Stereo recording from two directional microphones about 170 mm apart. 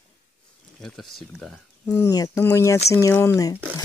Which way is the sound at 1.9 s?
20° left (ahead or behind).